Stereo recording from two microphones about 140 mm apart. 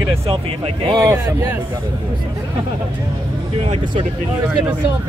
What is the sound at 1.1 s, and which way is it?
Speech, 15° right (ahead or behind).